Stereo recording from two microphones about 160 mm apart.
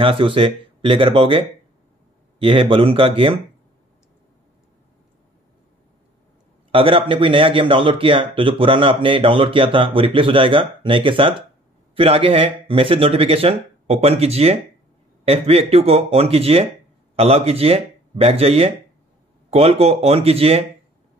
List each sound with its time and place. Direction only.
0.0 s speech: 35° right (ahead or behind)
6.7 s speech: 35° right (ahead or behind)